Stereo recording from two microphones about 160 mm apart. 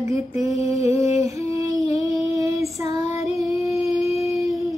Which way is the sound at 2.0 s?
25° right (ahead or behind).